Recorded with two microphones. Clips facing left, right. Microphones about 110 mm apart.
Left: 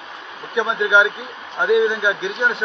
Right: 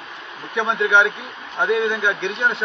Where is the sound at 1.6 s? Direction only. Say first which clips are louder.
Left 3 dB; 5° left (ahead or behind).